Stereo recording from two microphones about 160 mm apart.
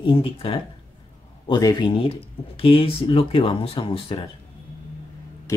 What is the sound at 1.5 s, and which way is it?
Speech, 25° left (ahead or behind).